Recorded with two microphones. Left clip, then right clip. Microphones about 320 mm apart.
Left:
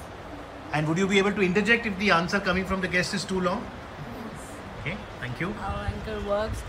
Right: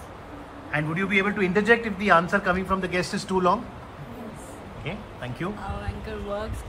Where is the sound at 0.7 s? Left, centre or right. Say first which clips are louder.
Even; centre.